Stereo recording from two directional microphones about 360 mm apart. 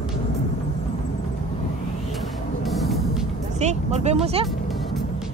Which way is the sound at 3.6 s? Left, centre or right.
Centre.